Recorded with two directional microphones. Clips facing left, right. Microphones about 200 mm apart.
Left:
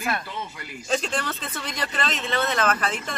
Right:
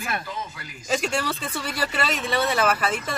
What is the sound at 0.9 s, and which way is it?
Speech, 10° right (ahead or behind).